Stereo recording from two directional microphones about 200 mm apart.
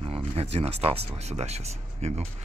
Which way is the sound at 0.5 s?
30° right (ahead or behind).